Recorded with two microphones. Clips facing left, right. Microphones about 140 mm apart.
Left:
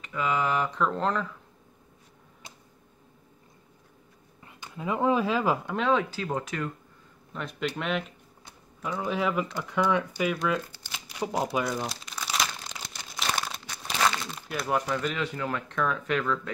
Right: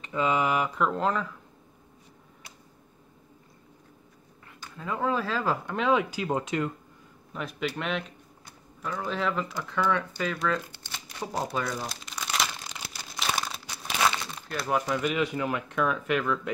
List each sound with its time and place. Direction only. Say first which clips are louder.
0.0 s speech: right 2 dB; 25° right (ahead or behind); by 1.3 s centre (ahead or behind)
4.5 s speech: left 3 dB; 20° left (ahead or behind)
5.8 s speech: right 1 dB; 5° right (ahead or behind)
7.3 s speech: even; 5° right (ahead or behind)
8.8 s speech: left 2 dB; 10° left (ahead or behind)
10.9 s shuffling cards: left 4 dB; 10° left (ahead or behind)
11.4 s speech: left 1 dB; 20° left (ahead or behind)
11.8 s crumpling: left 2 dB; centre (ahead or behind)